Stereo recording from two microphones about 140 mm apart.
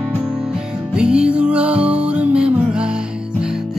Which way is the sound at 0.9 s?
5° right (ahead or behind).